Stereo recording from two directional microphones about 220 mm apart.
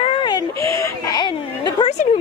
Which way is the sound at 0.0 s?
20° left (ahead or behind).